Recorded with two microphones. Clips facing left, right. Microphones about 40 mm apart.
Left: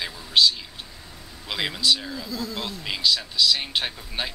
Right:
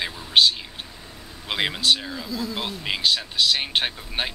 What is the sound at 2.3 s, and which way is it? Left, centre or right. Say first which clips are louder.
Speech: right 3 dB; centre.